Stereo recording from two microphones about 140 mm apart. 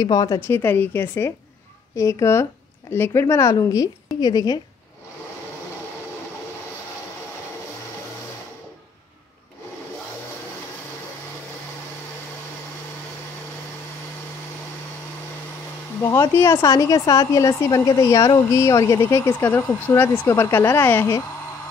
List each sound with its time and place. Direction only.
0.0 s speech: 25° left (ahead or behind)
0.4 s a woman's voice: 15° left (ahead or behind)
16.0 s speech: 20° left (ahead or behind)